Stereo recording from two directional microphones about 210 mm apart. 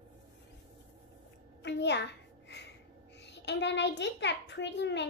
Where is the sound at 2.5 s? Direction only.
55° left (ahead or behind).